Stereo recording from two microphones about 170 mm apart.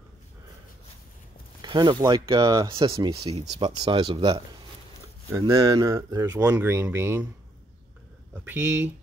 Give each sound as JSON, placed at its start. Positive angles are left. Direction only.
{"t": 1.6, "sound": "speech", "side_deg": -25}
{"t": 8.5, "sound": "speech", "side_deg": -10}